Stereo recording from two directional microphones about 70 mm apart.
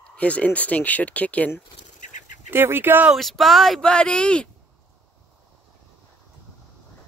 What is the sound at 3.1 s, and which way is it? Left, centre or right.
Speech, centre.